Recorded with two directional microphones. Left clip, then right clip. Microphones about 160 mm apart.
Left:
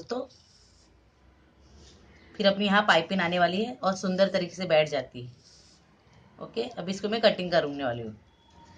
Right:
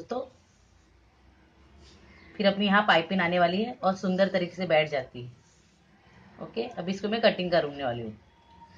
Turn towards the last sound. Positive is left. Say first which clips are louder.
# even
turn(degrees=-5)  # may be behind; listen again after turning